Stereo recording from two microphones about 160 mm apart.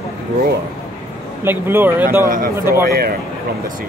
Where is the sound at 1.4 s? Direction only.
15° right (ahead or behind).